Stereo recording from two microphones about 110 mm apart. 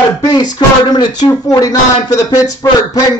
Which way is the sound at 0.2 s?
35° left (ahead or behind).